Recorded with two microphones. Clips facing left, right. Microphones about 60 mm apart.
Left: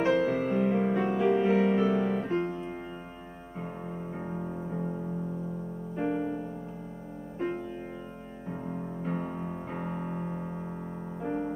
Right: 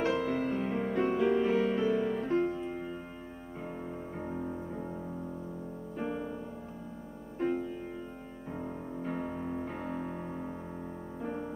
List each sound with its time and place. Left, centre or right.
0.0 s music: centre; by 2.1 s left
2.4 s music: centre
4.1 s music: centre
5.9 s music: centre
9.1 s music: left
9.7 s piano: left
11.1 s music: centre